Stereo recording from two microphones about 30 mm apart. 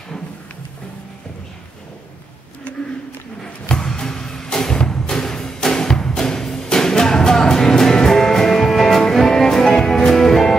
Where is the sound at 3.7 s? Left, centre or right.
Left.